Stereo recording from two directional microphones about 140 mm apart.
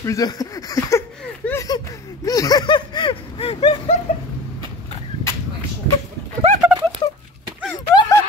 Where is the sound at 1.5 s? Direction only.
25° left (ahead or behind); by 3.9 s 45° left (ahead or behind).